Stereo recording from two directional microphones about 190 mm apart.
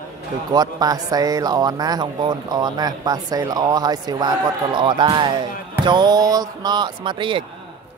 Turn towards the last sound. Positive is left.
turn(degrees=-25)  # may be behind; listen again after turning